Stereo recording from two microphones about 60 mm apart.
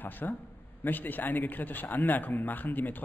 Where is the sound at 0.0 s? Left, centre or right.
Left.